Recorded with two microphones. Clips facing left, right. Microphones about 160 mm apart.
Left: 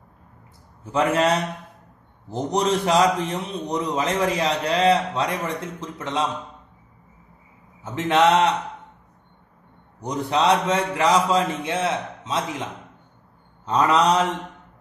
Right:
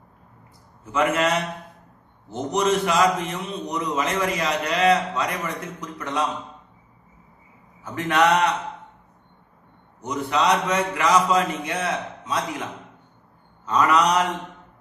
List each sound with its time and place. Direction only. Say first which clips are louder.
0.9 s a man's voice: left 2 dB; 35° left (ahead or behind)
7.8 s a man's voice: left 2 dB; 25° left (ahead or behind)
9.9 s a man's voice: left 1 dB; 35° left (ahead or behind)
13.7 s a man's voice: left 1 dB; 30° left (ahead or behind)